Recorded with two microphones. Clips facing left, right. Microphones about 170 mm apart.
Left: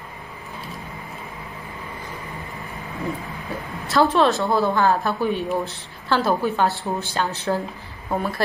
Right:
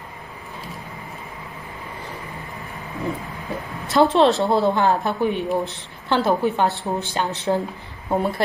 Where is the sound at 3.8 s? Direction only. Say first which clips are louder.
Right 2 dB; 20° right (ahead or behind).